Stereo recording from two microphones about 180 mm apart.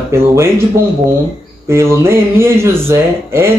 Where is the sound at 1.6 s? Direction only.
15° right (ahead or behind).